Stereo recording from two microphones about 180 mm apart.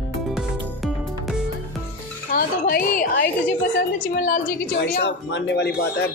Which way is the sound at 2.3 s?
55° left (ahead or behind).